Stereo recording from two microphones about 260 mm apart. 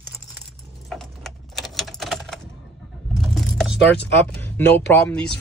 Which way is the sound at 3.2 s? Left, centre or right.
Centre.